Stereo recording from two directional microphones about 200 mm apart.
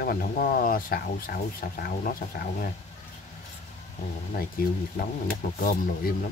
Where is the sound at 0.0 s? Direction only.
45° left (ahead or behind).